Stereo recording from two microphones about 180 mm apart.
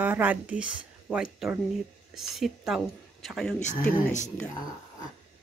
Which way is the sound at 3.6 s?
40° left (ahead or behind).